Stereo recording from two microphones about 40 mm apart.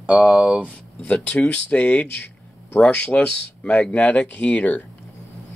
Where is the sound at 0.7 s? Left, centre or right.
Left.